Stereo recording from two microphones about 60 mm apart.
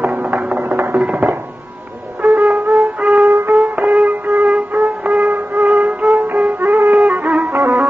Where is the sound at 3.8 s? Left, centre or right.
Centre.